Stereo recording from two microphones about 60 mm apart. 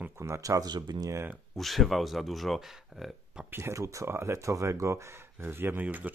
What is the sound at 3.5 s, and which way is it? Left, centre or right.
Speech, right.